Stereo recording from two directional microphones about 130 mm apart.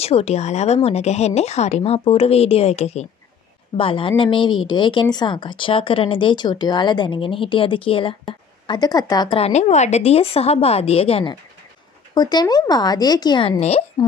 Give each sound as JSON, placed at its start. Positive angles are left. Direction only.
{"t": 0.0, "sound": "a woman's voice", "side_deg": 55}
{"t": 3.7, "sound": "a woman's voice", "side_deg": 45}
{"t": 8.6, "sound": "speech", "side_deg": 30}
{"t": 9.3, "sound": "a woman's voice", "side_deg": 55}
{"t": 12.1, "sound": "speech", "side_deg": 35}
{"t": 13.5, "sound": "a woman's voice", "side_deg": 50}